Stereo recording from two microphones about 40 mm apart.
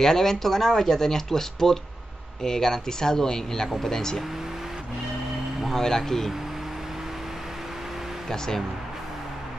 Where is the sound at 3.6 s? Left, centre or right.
Centre.